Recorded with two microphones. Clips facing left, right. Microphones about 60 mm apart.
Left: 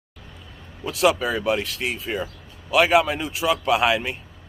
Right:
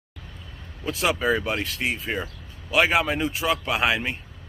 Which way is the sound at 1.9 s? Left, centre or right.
Centre.